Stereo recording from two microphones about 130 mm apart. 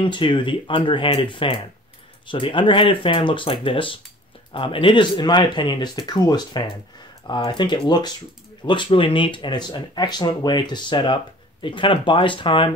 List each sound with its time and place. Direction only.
0.0 s speech: 40° left (ahead or behind)